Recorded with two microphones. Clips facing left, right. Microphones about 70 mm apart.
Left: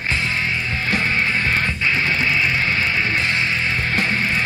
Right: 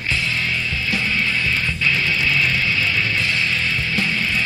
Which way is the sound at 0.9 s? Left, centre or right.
Left.